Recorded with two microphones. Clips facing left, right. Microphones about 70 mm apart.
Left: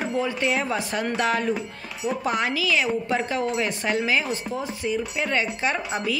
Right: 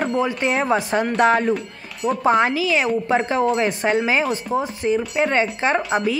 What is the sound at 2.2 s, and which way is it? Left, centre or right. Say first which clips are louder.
A woman's voice: right 9 dB; right.